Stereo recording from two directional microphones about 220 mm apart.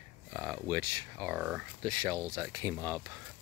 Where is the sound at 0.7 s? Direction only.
15° right (ahead or behind).